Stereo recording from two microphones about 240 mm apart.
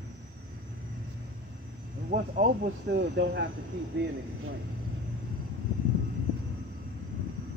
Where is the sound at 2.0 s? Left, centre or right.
Right.